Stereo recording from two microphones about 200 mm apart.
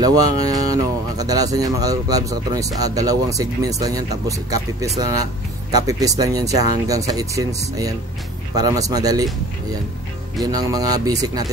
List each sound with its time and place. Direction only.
0.0 s speech: 20° right (ahead or behind)
10.4 s speech: 20° right (ahead or behind)